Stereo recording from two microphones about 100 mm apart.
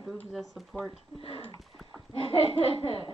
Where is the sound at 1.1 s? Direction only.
65° left (ahead or behind).